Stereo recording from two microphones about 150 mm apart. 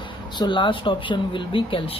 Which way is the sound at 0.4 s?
30° left (ahead or behind).